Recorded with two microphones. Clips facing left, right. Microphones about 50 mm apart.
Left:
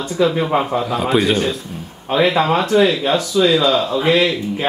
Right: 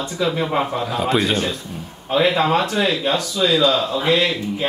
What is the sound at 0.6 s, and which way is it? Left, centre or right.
A man's voice, centre.